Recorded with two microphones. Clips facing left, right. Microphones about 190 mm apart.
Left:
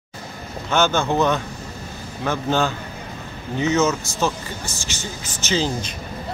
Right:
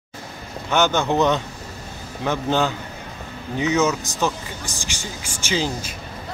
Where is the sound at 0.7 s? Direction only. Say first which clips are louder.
Even; 15° right (ahead or behind).